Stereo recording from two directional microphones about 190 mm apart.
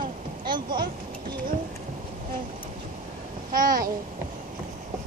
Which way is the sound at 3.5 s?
45° right (ahead or behind).